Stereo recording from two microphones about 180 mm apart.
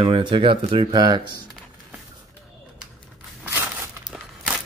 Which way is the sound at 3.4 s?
10° right (ahead or behind).